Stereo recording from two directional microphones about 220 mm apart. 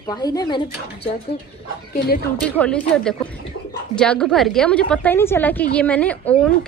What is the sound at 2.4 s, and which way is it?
A woman's voice, 5° left (ahead or behind).